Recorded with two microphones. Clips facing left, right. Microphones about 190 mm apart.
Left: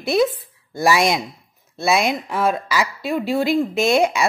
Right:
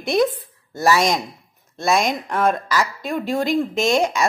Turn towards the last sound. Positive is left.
turn(degrees=10)  # may be behind; listen again after turning